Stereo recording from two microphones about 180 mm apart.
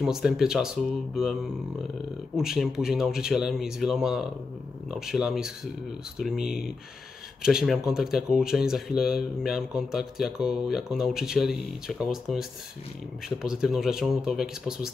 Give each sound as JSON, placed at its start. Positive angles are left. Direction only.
{"t": 0.0, "sound": "speech", "side_deg": 0}
{"t": 2.3, "sound": "speech", "side_deg": 0}